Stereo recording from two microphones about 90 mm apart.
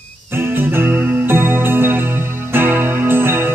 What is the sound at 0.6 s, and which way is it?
Music, 25° right (ahead or behind).